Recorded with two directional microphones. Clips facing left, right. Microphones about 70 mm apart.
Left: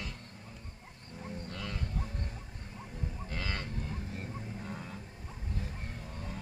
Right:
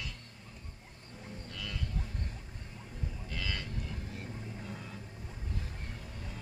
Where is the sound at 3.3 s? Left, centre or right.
Left.